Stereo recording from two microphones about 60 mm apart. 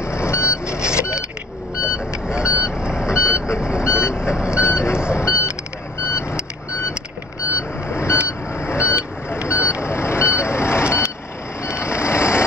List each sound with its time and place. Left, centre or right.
0.0 s vehicle: left
0.7 s vehicle: centre
2.4 s vehicle: left
2.8 s vehicle: centre
3.1 s vehicle: left
3.5 s vehicle: centre
4.1 s reversing beeps: centre
4.6 s reversing beeps: left
5.1 s vehicle: left
7.5 s vehicle: left
11.6 s reversing beeps: left